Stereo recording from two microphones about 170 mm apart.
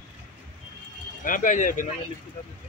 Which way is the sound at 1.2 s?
50° left (ahead or behind).